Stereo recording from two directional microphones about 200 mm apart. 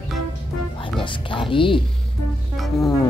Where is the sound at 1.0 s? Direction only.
25° left (ahead or behind).